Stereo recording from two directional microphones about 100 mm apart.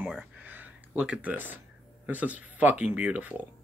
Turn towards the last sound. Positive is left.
turn(degrees=-15)  # may be behind; listen again after turning